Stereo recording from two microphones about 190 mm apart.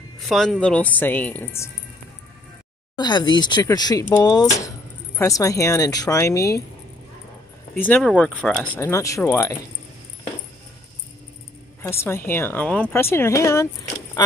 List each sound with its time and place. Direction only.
0.3 s speech: centre (ahead or behind)
3.0 s speech: 25° left (ahead or behind)
7.8 s speech: 10° left (ahead or behind)
11.8 s speech: 15° left (ahead or behind)